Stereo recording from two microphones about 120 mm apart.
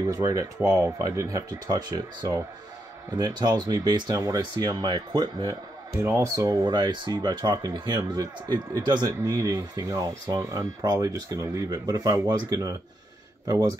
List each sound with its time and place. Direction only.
0.1 s speech: 30° right (ahead or behind)
5.9 s speech: 20° right (ahead or behind)